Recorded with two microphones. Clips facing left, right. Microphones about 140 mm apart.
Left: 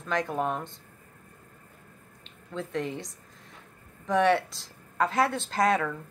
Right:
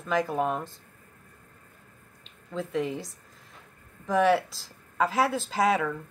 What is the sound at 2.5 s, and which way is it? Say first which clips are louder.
Speech: right 2 dB; centre (ahead or behind).